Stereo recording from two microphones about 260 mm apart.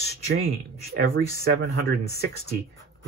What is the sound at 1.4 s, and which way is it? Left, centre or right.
Speech, right.